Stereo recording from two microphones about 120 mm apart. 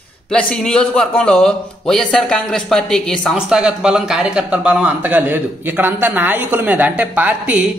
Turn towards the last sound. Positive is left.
turn(degrees=-15)  # may be behind; listen again after turning